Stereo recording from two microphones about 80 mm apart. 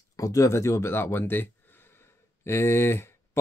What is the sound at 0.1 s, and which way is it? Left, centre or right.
Speech, left.